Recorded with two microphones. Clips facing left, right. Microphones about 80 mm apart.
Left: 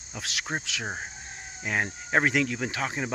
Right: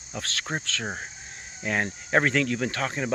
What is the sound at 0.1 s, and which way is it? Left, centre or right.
Speech, centre.